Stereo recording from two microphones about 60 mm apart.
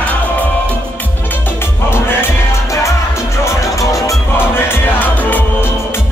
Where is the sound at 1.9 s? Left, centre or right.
Left.